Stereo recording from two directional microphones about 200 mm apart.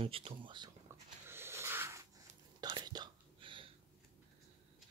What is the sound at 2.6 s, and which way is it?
Whispering, 20° right (ahead or behind).